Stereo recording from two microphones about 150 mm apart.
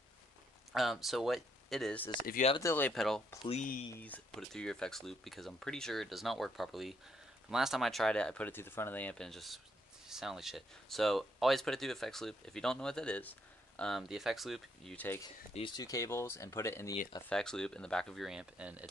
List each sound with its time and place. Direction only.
0.7 s speech: centre (ahead or behind)
2.6 s speech: 15° left (ahead or behind)
2.9 s speech: centre (ahead or behind)
15.0 s speech: 15° left (ahead or behind)
15.5 s speech: 30° left (ahead or behind)
17.3 s speech: 5° left (ahead or behind)